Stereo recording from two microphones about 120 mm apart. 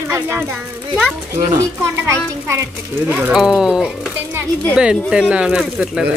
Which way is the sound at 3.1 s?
10° right (ahead or behind).